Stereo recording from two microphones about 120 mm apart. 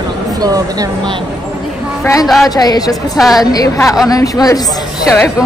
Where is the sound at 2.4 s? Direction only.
35° left (ahead or behind).